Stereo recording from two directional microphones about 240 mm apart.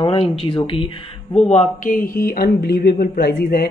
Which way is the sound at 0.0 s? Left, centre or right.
Left.